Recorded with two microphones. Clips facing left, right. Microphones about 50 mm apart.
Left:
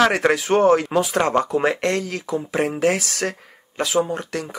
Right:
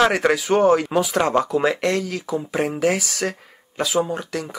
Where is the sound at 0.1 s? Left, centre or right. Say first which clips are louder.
Even; left.